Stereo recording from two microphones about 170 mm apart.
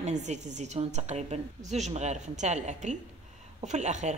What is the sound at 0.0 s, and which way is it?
A woman's voice, 45° right (ahead or behind).